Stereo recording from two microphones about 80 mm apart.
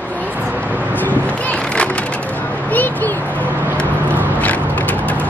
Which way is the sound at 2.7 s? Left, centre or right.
Left.